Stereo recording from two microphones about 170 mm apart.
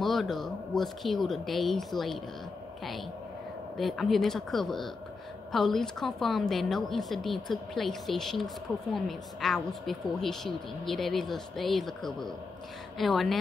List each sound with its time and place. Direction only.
0.0 s speech: centre (ahead or behind)
3.7 s speech: centre (ahead or behind)